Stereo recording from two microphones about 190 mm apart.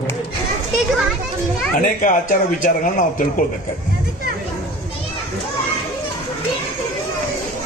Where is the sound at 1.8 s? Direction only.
45° left (ahead or behind).